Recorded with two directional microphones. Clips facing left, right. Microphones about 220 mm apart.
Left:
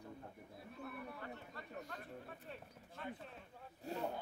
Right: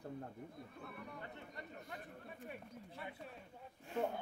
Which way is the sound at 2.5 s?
10° right (ahead or behind).